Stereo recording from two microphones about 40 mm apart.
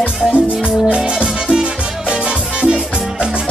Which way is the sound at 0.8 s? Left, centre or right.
Right.